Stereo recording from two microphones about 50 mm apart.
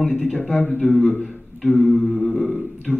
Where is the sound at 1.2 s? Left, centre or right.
Centre.